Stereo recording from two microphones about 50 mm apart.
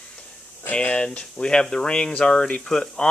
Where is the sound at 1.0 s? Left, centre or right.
Centre.